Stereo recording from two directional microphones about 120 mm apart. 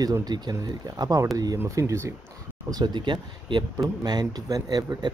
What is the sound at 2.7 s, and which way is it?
Speech, 35° right (ahead or behind).